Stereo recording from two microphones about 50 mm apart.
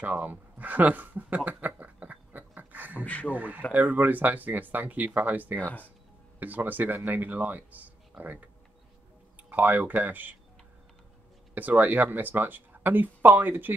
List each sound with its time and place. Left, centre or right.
0.0 s a sound: right
3.3 s speech: right
11.5 s speech: right